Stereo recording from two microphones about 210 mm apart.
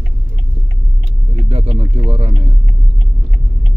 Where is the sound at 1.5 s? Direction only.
30° right (ahead or behind).